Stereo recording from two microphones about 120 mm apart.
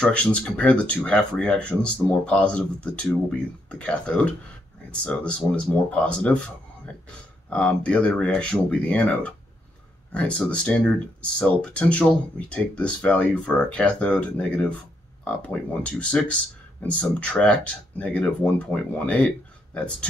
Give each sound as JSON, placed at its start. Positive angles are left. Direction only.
{"t": 0.0, "sound": "speech", "side_deg": 10}